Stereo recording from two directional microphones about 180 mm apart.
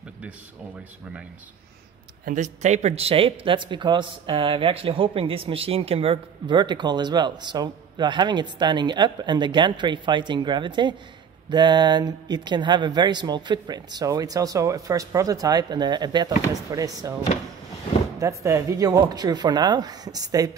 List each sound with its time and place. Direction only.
2.2 s speech: 45° right (ahead or behind); by 17.1 s 20° right (ahead or behind)
18.2 s speech: 15° right (ahead or behind)